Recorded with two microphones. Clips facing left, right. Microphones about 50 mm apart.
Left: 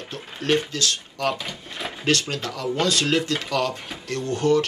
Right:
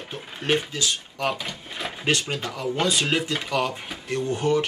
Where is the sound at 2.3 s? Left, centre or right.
Centre.